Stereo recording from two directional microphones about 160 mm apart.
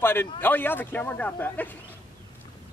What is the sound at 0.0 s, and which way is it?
A man's voice, 15° left (ahead or behind).